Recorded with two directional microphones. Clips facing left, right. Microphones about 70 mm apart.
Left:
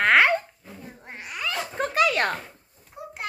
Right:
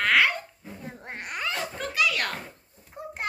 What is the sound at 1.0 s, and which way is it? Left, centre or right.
Babbling, right.